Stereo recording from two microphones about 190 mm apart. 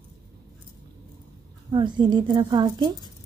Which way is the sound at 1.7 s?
25° right (ahead or behind).